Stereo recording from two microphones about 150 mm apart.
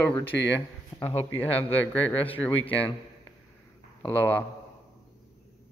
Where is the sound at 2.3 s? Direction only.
10° left (ahead or behind).